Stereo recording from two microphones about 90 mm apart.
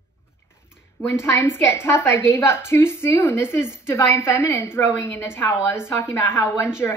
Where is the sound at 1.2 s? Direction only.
30° left (ahead or behind).